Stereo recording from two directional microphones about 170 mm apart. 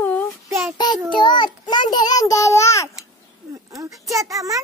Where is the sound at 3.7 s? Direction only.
20° right (ahead or behind).